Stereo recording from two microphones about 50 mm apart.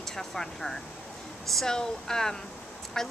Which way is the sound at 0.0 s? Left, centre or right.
Centre.